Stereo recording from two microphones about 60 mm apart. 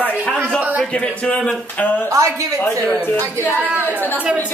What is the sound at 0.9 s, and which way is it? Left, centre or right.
Speech, centre.